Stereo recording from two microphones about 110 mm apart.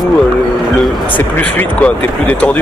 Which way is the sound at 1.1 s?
15° left (ahead or behind).